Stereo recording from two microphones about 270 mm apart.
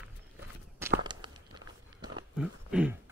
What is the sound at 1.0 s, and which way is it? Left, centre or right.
Walk, centre.